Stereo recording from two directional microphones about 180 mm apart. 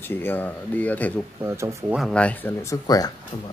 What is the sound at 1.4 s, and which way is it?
Speech, 15° right (ahead or behind).